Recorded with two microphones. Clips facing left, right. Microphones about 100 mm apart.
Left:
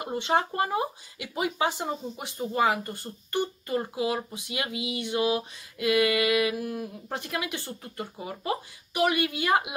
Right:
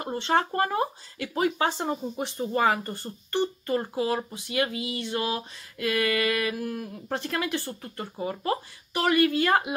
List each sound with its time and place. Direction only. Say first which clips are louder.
0.0 s speech: right 1 dB; 15° left (ahead or behind)